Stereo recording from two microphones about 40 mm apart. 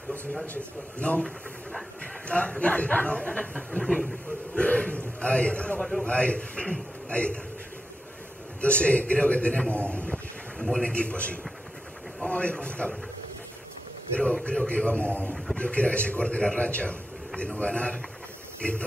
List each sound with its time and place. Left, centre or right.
0.9 s a man's voice: left
3.8 s speech: centre
4.6 s speech: left
5.8 s a man's voice: centre
6.0 s speech: left
8.5 s a man's voice: left
14.1 s speech: left
14.9 s a man's voice: left